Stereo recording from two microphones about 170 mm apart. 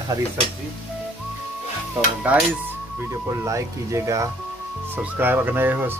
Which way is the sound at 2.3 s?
10° right (ahead or behind).